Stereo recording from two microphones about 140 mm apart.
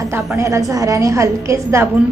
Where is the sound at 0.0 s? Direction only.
20° right (ahead or behind).